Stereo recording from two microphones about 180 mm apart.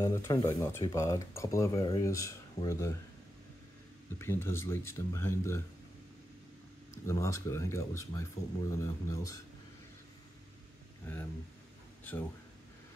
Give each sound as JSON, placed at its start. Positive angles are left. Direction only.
{"t": 0.0, "sound": "speech", "side_deg": 15}
{"t": 4.2, "sound": "speech", "side_deg": 15}
{"t": 7.1, "sound": "speech", "side_deg": 15}
{"t": 11.1, "sound": "speech", "side_deg": 10}